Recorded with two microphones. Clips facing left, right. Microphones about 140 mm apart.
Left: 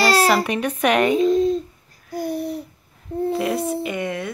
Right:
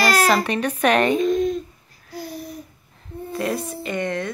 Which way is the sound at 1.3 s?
25° left (ahead or behind).